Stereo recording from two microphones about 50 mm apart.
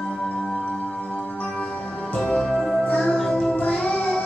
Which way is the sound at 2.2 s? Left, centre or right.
Centre.